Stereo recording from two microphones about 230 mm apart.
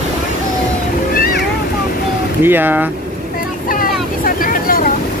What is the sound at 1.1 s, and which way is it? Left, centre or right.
Vehicle, left.